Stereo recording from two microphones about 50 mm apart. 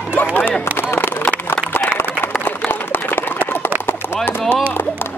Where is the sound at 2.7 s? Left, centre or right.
Left.